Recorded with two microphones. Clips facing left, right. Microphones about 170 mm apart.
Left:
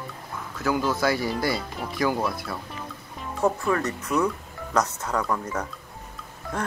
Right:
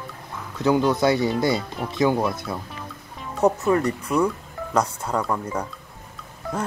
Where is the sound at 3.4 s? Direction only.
20° right (ahead or behind).